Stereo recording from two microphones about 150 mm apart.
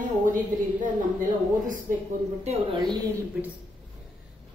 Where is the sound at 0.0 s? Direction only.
65° right (ahead or behind).